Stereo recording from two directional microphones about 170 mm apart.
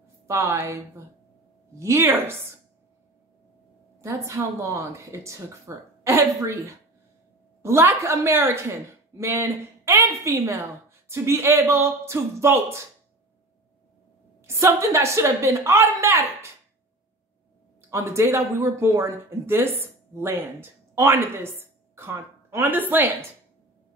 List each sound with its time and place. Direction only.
0.3 s a woman's voice: 15° right (ahead or behind)
4.0 s a woman's voice: 15° right (ahead or behind)
14.4 s a woman's voice: 15° right (ahead or behind)
17.8 s speech: 15° right (ahead or behind)